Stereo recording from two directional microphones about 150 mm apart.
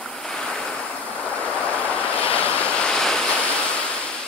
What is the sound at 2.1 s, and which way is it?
Waves, 10° left (ahead or behind).